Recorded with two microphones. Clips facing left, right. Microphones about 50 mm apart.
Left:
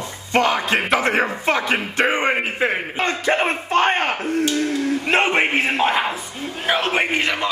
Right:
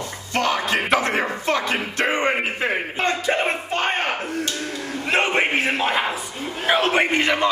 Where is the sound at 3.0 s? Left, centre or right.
Left.